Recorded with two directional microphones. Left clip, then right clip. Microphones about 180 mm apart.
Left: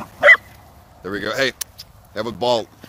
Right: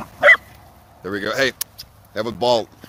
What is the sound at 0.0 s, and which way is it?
Dog, 15° right (ahead or behind).